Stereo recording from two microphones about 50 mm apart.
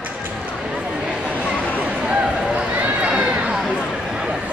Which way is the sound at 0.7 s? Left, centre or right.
Centre.